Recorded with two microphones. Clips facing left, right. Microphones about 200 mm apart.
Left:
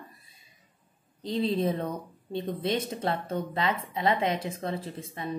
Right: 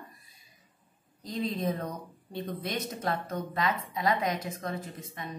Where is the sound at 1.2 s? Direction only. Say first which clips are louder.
Left 5 dB; 30° left (ahead or behind).